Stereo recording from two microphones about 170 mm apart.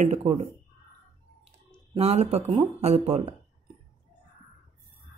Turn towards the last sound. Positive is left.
turn(degrees=-35)  # may be behind; listen again after turning